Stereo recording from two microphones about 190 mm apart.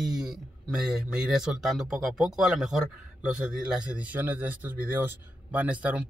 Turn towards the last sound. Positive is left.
turn(degrees=-5)  # may be behind; listen again after turning